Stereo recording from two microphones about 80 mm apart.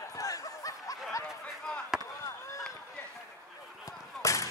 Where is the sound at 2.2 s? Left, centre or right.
Left.